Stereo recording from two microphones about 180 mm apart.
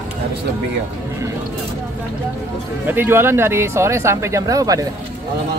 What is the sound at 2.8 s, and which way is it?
Speech, 10° right (ahead or behind).